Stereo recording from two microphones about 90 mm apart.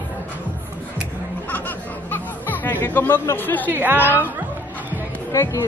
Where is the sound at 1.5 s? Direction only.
20° left (ahead or behind).